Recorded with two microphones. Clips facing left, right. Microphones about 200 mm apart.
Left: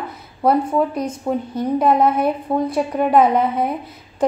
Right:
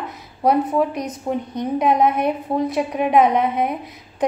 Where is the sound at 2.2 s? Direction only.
Centre (ahead or behind).